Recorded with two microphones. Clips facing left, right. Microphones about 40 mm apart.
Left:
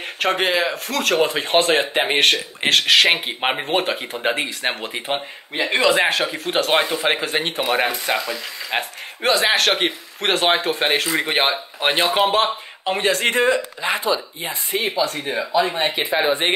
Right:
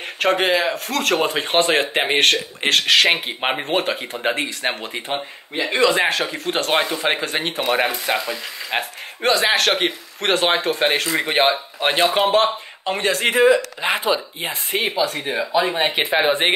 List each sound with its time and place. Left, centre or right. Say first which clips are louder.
0.0 s speech: right 1 dB; centre
5.6 s speech: even; left
6.0 s speech: even; centre
13.2 s speech: right 6 dB; centre
14.7 s speech: right 1 dB; right
15.3 s speech: right 1 dB; centre
15.7 s speech: right 1 dB; right
16.0 s speech: right 1 dB; right